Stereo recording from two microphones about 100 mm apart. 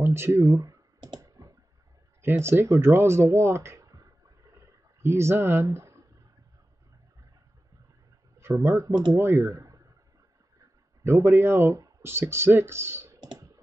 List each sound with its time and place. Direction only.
0.0 s speech: 25° right (ahead or behind)
1.2 s clicking: 35° right (ahead or behind)
2.2 s speech: 25° right (ahead or behind)
5.0 s speech: 25° right (ahead or behind)
8.4 s speech: 25° right (ahead or behind)
11.1 s speech: 25° right (ahead or behind)